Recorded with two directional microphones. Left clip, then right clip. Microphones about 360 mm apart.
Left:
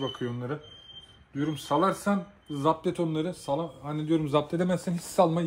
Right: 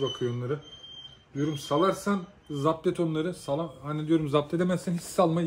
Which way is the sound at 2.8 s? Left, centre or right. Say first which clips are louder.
Right 1 dB; centre.